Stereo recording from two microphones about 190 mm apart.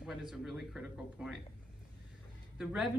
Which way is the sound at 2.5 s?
5° right (ahead or behind).